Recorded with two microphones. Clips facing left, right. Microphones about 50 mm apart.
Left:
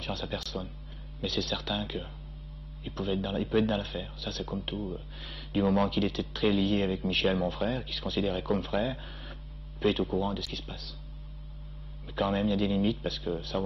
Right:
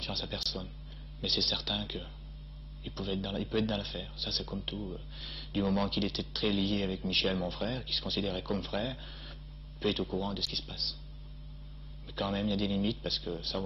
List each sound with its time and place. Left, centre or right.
0.0 s speech: left; by 3.6 s centre
3.6 s speech: centre
5.5 s speech: centre
5.9 s speech: centre
6.4 s speech: centre
7.4 s speech: centre
10.3 s speech: centre
12.2 s speech: centre